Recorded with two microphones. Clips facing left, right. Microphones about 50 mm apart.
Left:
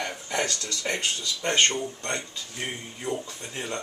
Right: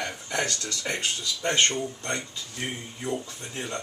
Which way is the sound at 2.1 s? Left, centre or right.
Centre.